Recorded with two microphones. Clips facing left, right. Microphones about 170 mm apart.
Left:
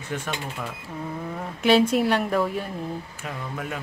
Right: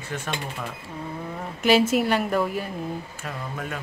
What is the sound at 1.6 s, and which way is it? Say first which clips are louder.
A woman's voice: left 1 dB; centre (ahead or behind).